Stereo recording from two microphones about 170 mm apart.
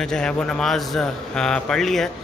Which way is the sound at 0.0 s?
5° left (ahead or behind).